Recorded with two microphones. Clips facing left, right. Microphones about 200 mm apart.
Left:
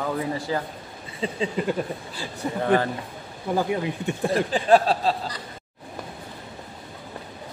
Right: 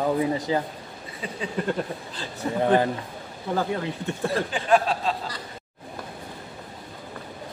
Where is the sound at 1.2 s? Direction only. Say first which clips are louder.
Left 6 dB; 25° left (ahead or behind).